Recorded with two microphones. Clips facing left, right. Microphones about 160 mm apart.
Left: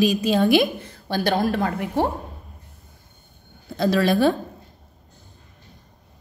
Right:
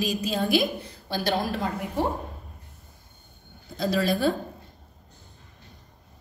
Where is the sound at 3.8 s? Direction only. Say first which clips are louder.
Left 5 dB; 75° left (ahead or behind).